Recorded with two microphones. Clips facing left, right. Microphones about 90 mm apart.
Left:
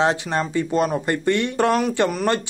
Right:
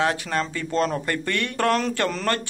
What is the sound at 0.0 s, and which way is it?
Speech, 20° left (ahead or behind).